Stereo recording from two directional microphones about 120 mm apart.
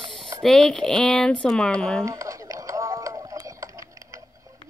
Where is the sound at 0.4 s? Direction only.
5° left (ahead or behind).